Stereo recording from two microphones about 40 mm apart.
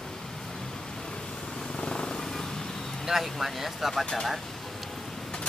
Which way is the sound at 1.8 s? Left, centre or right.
Left.